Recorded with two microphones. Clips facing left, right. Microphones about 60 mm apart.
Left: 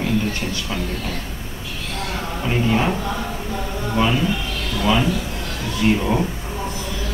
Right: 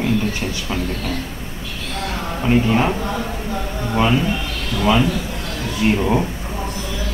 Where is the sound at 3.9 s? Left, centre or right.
Centre.